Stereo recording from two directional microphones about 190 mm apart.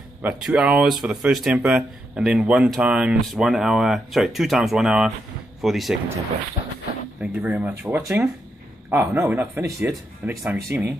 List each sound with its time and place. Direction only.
0.2 s speech: 5° right (ahead or behind)
7.2 s speech: 5° right (ahead or behind)